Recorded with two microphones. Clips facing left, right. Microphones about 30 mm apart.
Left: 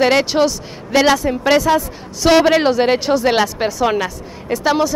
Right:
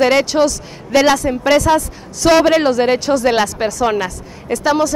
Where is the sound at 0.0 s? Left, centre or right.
Centre.